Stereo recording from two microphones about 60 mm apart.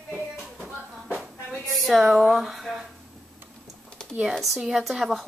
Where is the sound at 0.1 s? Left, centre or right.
Centre.